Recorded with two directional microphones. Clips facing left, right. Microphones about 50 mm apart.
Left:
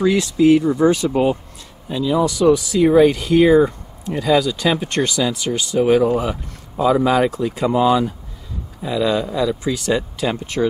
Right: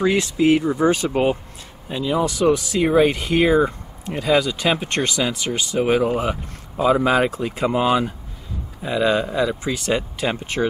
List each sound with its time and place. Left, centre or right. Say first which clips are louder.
0.0 s speech: left 3 dB; right
3.4 s speech: left 2 dB; centre